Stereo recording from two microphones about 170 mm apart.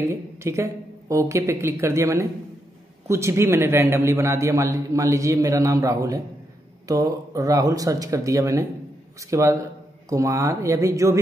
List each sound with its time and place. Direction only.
0.1 s a man's voice: 15° right (ahead or behind)